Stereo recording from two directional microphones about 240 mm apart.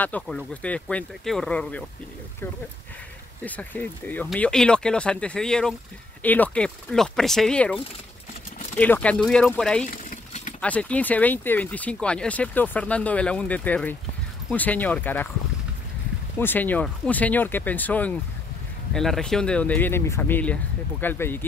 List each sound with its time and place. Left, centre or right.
0.0 s speech: centre
3.4 s speech: centre
10.0 s keys jangling: left
10.6 s speech: centre
16.3 s speech: centre